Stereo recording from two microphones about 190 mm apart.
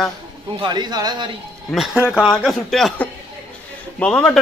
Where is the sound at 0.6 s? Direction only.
25° right (ahead or behind).